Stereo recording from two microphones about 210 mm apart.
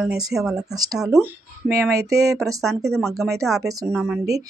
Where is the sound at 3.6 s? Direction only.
15° right (ahead or behind).